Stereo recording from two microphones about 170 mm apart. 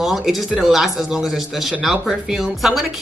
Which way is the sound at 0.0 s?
Centre (ahead or behind).